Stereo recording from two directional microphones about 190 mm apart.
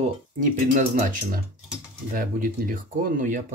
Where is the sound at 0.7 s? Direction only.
40° right (ahead or behind).